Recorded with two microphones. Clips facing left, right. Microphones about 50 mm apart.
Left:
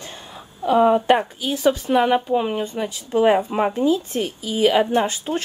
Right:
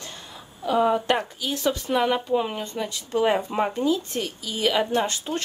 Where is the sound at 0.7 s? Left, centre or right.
Left.